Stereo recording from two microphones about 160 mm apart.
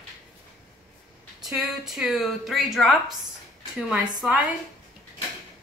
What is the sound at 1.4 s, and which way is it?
A woman's voice, centre (ahead or behind).